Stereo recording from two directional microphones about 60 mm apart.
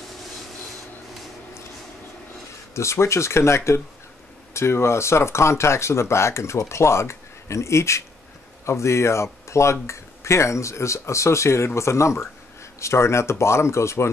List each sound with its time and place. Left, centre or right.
2.7 s speech: left